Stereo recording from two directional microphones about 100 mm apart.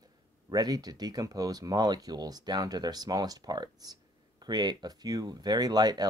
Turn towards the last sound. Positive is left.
turn(degrees=-45)  # may be behind; listen again after turning